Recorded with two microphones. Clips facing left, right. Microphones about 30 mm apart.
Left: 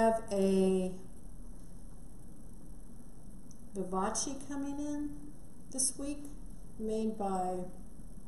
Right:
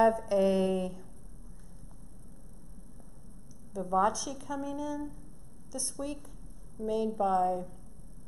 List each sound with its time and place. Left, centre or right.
0.0 s speech: centre
3.9 s speech: centre
4.5 s a sound: centre
5.7 s speech: centre